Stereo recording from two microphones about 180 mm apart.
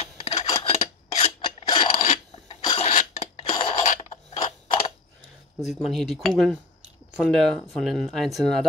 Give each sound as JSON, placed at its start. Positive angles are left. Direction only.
{"t": 0.0, "sound": "filing", "side_deg": 35}
{"t": 3.8, "sound": "filing", "side_deg": 40}
{"t": 5.6, "sound": "speech", "side_deg": 0}